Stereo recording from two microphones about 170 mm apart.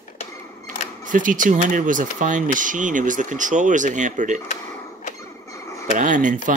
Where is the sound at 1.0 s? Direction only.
50° right (ahead or behind).